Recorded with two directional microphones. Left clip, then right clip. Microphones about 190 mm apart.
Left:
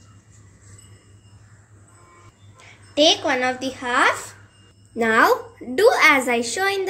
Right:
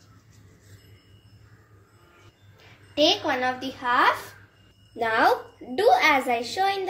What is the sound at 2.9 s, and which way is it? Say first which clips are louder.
A woman's voice: left 5 dB; 40° left (ahead or behind).